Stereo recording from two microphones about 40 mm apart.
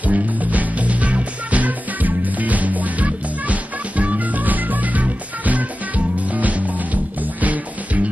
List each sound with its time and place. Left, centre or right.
0.0 s music: right